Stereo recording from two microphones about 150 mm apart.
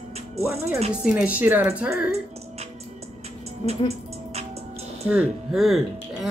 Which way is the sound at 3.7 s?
45° right (ahead or behind).